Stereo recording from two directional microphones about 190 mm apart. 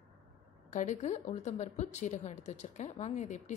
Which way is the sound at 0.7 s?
40° left (ahead or behind).